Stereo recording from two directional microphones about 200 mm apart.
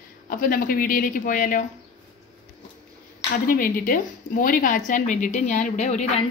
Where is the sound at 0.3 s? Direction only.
45° left (ahead or behind).